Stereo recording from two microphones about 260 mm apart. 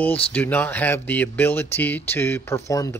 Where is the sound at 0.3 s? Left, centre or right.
Centre.